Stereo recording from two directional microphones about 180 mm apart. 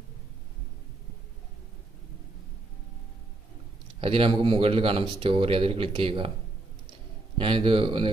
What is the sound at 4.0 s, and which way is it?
Speech, 30° right (ahead or behind).